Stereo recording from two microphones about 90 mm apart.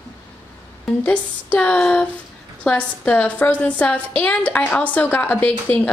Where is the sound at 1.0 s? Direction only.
15° left (ahead or behind).